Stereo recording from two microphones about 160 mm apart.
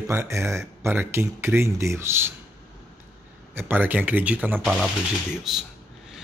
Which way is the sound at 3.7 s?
10° right (ahead or behind).